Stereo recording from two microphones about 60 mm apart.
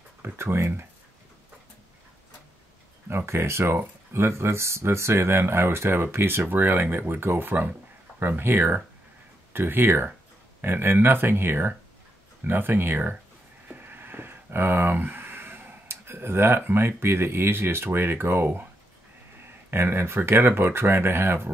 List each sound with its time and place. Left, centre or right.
0.2 s speech: right
3.1 s speech: right
13.7 s a sound: right
15.9 s speech: right
19.7 s speech: right